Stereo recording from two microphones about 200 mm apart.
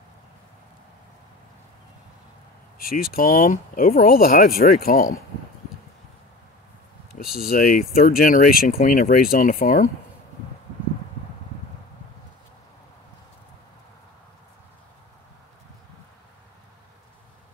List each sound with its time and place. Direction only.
2.8 s speech: 45° left (ahead or behind)
7.2 s speech: 50° left (ahead or behind)